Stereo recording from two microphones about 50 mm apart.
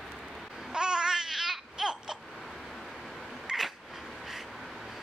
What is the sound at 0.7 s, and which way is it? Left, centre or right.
Babbling, centre.